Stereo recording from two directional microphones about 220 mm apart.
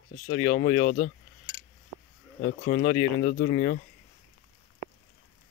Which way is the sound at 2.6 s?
50° left (ahead or behind).